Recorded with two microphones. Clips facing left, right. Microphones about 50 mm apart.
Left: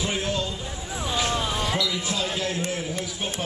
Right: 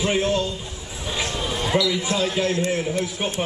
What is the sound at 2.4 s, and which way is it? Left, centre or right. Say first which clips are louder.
Speech: right 6 dB; right.